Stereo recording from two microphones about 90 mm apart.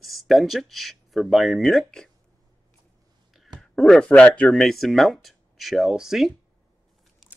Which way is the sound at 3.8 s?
Centre (ahead or behind).